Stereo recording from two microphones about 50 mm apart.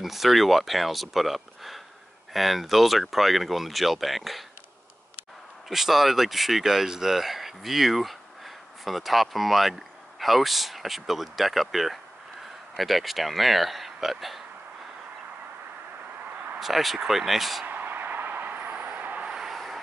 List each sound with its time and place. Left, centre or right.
0.0 s speech: centre
5.7 s speech: centre
16.5 s speech: centre
17.6 s vehicle: right
19.2 s vehicle: centre
19.5 s vehicle: centre